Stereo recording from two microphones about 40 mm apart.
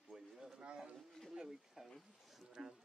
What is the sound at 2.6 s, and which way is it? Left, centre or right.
Speech, right.